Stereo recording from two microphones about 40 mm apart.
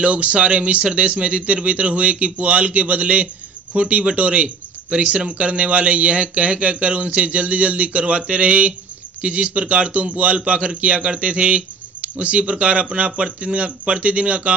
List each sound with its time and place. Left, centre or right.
0.0 s speech: right